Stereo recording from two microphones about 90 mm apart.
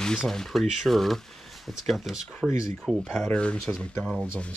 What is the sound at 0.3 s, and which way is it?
Speech, 5° left (ahead or behind).